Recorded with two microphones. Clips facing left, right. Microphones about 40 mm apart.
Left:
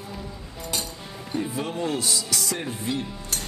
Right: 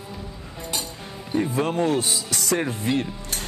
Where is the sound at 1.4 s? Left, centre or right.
Right.